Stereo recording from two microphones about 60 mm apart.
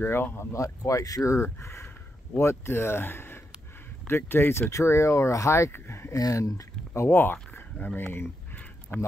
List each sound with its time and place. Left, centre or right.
0.0 s speech: left
0.5 s speech: left
1.4 s speech: left
4.6 s speech: left
6.1 s speech: left
7.0 s speech: left